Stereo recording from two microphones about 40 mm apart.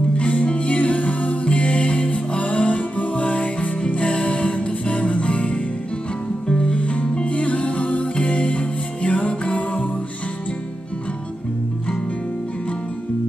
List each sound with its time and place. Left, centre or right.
0.2 s music: left
6.6 s music: left